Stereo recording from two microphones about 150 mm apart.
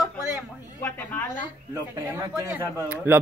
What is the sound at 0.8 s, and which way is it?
Speech, 15° left (ahead or behind).